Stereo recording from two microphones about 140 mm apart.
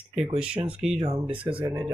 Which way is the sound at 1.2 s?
40° right (ahead or behind).